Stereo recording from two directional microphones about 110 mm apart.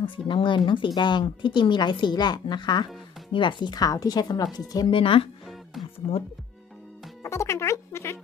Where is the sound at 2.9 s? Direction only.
Centre (ahead or behind).